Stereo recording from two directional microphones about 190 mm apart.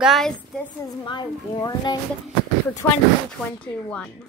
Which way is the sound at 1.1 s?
25° left (ahead or behind).